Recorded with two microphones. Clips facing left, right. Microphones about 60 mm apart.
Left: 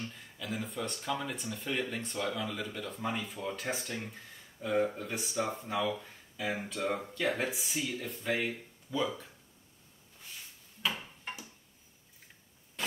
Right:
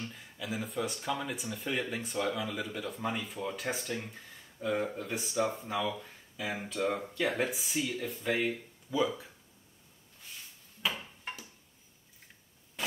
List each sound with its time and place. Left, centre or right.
0.1 s speech: centre
10.8 s a sound: centre
12.8 s static: centre